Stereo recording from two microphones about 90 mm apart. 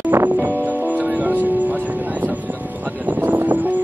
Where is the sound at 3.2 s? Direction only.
20° right (ahead or behind).